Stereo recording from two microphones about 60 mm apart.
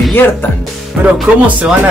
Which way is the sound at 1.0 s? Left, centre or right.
Right.